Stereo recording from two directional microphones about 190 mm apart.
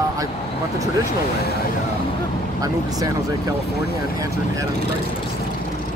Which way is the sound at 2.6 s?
20° right (ahead or behind).